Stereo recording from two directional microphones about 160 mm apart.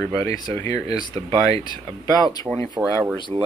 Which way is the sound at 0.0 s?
15° left (ahead or behind).